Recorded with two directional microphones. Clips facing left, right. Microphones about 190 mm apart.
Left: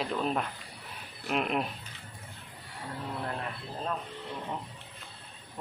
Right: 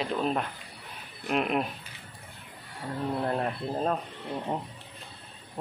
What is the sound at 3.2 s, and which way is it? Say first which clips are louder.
Speech: right 7 dB; 40° right (ahead or behind).